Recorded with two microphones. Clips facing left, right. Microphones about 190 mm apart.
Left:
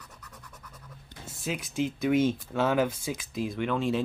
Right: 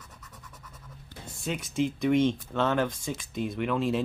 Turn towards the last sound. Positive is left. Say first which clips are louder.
# even
turn(degrees=0)  # may be behind; listen again after turning